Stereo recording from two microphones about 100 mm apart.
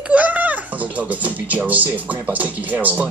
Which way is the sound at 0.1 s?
15° right (ahead or behind).